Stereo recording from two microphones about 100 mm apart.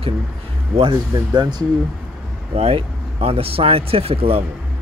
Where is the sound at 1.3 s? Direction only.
45° right (ahead or behind).